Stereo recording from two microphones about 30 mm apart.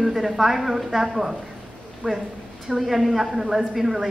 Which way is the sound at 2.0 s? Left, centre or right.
Left.